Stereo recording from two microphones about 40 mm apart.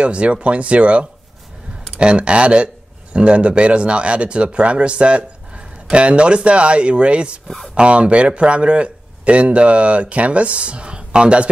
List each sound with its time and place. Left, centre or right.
0.0 s speech: right